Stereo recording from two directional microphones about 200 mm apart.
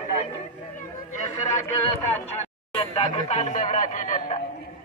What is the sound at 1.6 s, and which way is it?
Speech, 30° left (ahead or behind).